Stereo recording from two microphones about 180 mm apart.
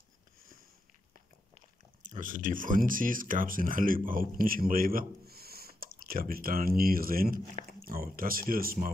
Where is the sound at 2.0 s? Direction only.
45° right (ahead or behind).